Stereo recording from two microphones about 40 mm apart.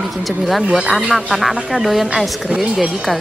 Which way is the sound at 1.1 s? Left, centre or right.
Centre.